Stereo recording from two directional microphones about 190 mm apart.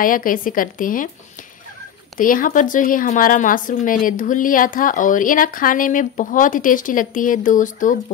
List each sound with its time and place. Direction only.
0.0 s speech: 45° left (ahead or behind)
2.1 s speech: 45° left (ahead or behind)